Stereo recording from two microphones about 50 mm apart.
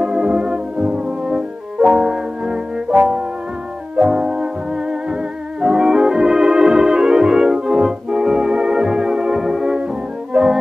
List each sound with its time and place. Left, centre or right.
0.0 s brass instrument: centre
4.0 s music: centre
5.6 s organ: centre
10.3 s music: centre